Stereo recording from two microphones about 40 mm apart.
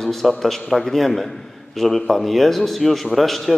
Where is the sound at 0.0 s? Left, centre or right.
Centre.